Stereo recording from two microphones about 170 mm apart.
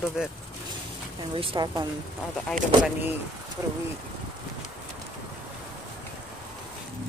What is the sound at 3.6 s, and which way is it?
Speech, 15° right (ahead or behind).